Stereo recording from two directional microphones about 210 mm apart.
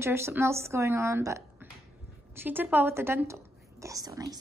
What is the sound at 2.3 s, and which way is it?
Whispering, 10° right (ahead or behind).